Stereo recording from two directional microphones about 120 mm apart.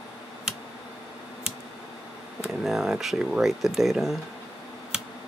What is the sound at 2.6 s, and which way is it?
Speech, centre (ahead or behind).